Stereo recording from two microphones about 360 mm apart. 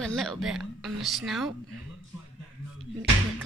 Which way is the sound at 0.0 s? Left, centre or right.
Centre.